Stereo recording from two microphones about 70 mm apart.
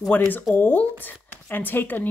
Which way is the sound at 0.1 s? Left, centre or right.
Left.